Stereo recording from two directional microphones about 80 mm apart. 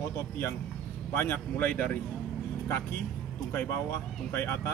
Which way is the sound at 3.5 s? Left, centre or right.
Left.